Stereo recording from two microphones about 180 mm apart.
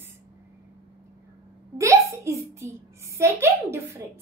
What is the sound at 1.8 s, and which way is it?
A woman's voice, 15° right (ahead or behind).